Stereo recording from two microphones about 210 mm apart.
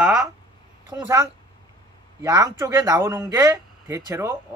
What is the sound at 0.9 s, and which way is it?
Speech, 15° right (ahead or behind).